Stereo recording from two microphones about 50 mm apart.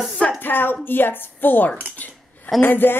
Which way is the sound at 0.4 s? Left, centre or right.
Left.